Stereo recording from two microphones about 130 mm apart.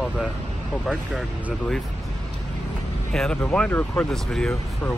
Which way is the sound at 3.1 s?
5° left (ahead or behind).